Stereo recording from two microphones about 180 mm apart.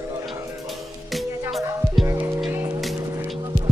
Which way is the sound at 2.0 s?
10° right (ahead or behind).